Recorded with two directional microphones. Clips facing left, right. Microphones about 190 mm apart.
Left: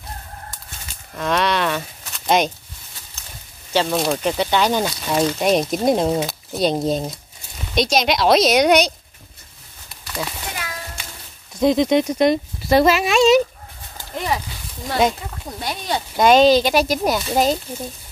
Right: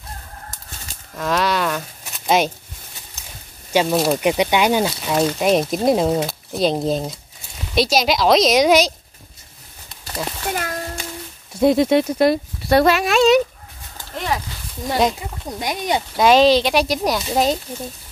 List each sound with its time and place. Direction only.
0.5 s chicken: 40° right (ahead or behind)
1.1 s speech: centre (ahead or behind)
3.7 s speech: 5° right (ahead or behind)
10.5 s a sound: 50° right (ahead or behind)
11.6 s speech: 5° right (ahead or behind)
15.1 s speech: 15° right (ahead or behind)
16.2 s speech: centre (ahead or behind)